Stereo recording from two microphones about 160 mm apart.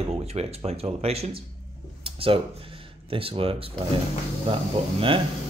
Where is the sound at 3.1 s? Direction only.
35° right (ahead or behind).